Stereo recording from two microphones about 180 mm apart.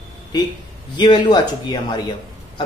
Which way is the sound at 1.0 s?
25° left (ahead or behind).